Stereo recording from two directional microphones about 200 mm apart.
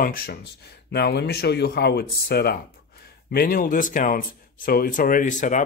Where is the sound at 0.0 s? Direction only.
45° left (ahead or behind).